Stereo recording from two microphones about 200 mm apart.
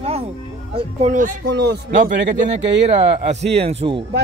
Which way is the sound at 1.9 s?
40° right (ahead or behind).